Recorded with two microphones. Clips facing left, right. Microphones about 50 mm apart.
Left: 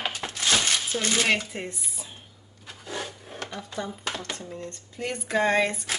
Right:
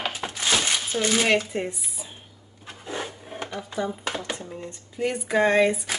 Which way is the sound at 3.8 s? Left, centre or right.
Centre.